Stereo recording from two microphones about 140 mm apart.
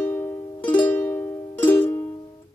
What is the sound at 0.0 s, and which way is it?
Music, 15° left (ahead or behind).